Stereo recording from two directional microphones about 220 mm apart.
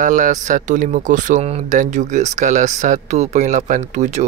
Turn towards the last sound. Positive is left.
turn(degrees=-30)  # may be behind; listen again after turning